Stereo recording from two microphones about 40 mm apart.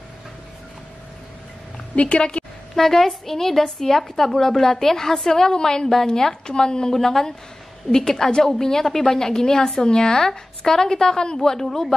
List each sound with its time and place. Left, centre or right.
2.0 s a woman's voice: left
2.7 s a woman's voice: centre